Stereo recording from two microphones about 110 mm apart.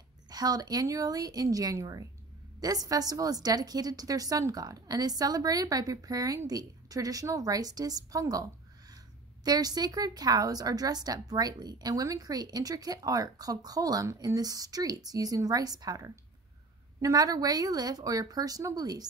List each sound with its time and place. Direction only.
0.3 s a woman's voice: 35° right (ahead or behind)